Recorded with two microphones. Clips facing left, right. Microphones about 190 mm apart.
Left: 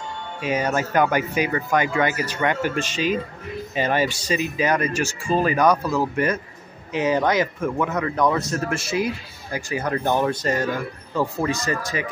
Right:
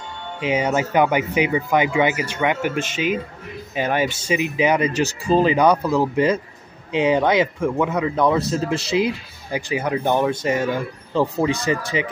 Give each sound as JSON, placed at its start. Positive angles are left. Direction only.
{"t": 0.4, "sound": "speech", "side_deg": -15}